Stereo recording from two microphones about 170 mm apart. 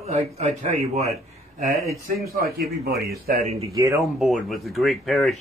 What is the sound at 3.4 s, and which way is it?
Speech, 40° right (ahead or behind).